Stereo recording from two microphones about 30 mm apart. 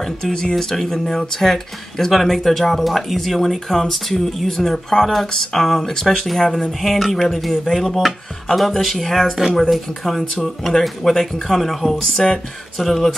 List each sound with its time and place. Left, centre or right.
0.0 s speech: centre
12.7 s speech: centre